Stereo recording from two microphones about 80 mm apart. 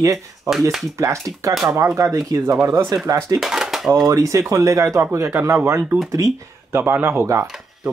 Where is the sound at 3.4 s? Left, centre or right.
Centre.